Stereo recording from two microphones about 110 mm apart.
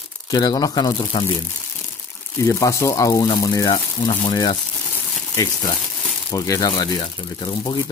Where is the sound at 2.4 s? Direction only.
25° left (ahead or behind).